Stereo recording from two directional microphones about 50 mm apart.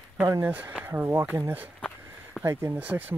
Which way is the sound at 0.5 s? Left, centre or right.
Right.